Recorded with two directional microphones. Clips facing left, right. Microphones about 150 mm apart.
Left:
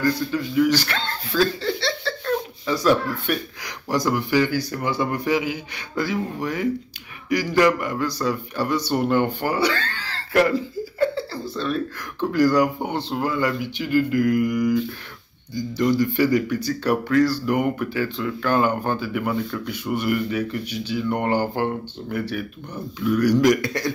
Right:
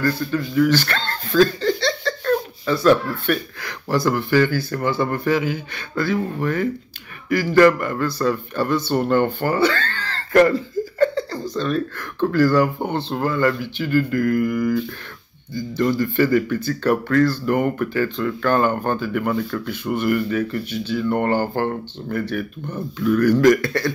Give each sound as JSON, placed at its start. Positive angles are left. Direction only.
{"t": 0.0, "sound": "speech", "side_deg": 15}
{"t": 9.4, "sound": "a sound", "side_deg": 15}
{"t": 11.5, "sound": "speech", "side_deg": 5}
{"t": 23.4, "sound": "speech", "side_deg": 15}